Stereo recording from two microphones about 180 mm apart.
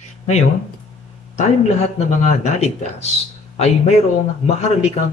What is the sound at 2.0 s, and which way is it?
A man's voice, 40° left (ahead or behind).